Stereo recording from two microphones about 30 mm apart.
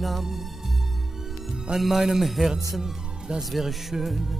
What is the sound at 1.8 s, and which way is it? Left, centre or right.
Music, centre.